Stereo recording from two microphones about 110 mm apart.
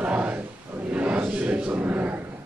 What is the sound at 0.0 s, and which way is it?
Battle cry, 10° right (ahead or behind).